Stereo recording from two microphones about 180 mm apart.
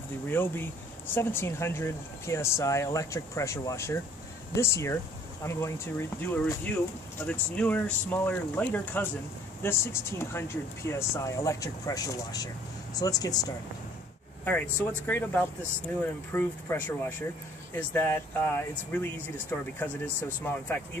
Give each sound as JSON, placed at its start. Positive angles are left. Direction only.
{"t": 0.3, "sound": "speech", "side_deg": 10}
{"t": 14.4, "sound": "speech", "side_deg": 10}